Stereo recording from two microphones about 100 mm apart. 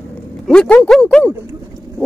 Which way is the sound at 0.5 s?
10° left (ahead or behind).